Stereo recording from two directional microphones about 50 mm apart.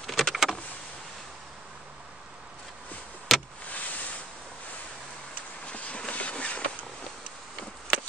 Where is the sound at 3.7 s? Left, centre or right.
Left.